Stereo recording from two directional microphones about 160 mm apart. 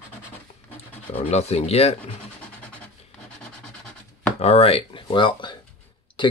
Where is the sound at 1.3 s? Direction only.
40° left (ahead or behind).